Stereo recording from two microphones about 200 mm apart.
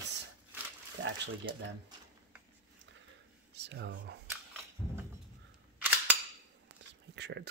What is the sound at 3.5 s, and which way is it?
Speech, 60° right (ahead or behind).